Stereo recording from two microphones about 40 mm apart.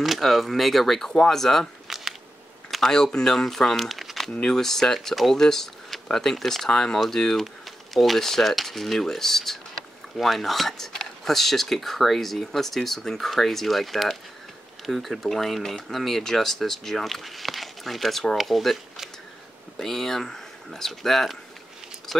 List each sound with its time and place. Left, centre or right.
0.0 s speech: centre
1.9 s camera: centre
2.7 s a sound: centre
3.1 s speech: centre
4.4 s speech: centre
19.8 s speech: centre